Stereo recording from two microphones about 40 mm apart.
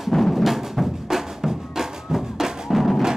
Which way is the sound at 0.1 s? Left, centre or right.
Centre.